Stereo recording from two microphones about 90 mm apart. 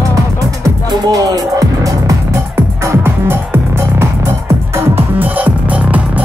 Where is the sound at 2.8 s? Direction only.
30° right (ahead or behind).